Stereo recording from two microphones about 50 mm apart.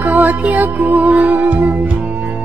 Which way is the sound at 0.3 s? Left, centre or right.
Right.